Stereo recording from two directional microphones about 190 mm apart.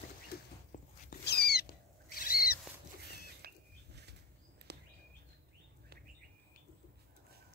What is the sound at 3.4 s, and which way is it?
Rodents, 60° right (ahead or behind).